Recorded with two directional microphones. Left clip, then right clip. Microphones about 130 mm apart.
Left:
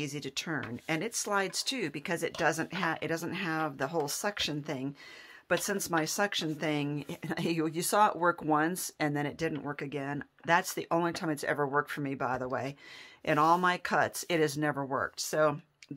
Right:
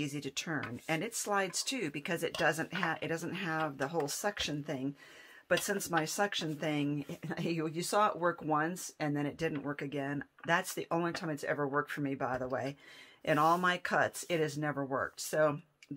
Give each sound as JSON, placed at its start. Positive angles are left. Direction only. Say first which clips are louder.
{"t": 0.0, "sound": "speech", "louder": "left 2 dB", "side_deg": 30}
{"t": 14.4, "sound": "speech", "louder": "left 5 dB", "side_deg": 50}